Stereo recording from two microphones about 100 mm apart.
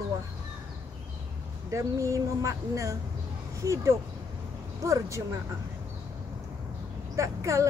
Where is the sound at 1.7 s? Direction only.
30° right (ahead or behind).